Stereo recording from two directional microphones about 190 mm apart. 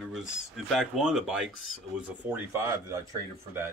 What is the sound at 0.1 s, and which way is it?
Speech, centre (ahead or behind).